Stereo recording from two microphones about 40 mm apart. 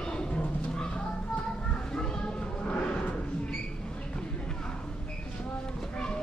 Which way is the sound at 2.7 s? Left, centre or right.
Left.